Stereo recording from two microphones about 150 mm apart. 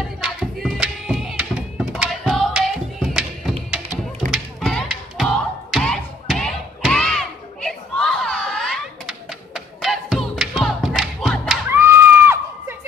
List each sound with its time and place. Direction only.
0.2 s a sound: 5° right (ahead or behind)
4.3 s music: 5° left (ahead or behind)
11.7 s crowd: 15° right (ahead or behind)